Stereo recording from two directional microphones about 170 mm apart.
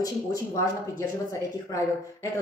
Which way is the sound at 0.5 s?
20° left (ahead or behind).